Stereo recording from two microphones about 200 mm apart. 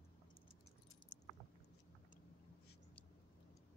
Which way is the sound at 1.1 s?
20° left (ahead or behind).